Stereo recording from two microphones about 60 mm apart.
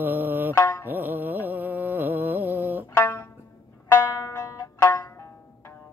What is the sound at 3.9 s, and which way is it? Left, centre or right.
Zither, left.